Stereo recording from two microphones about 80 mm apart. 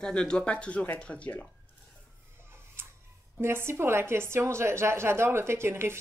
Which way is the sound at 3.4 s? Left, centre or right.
Right.